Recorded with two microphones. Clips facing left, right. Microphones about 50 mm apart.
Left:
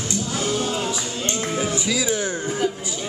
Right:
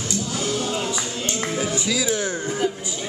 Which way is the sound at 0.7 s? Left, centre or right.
Centre.